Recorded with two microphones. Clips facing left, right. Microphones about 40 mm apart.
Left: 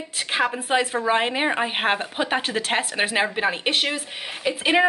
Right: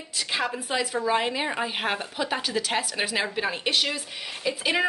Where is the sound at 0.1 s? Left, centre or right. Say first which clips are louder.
Left 4 dB; left.